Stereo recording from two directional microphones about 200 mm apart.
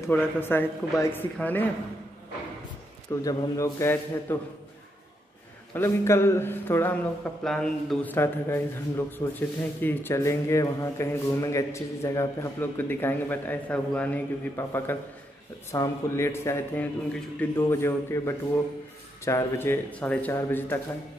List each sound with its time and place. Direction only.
0.0 s speech: 10° left (ahead or behind)
3.2 s speech: 15° left (ahead or behind)
5.8 s speech: 10° left (ahead or behind)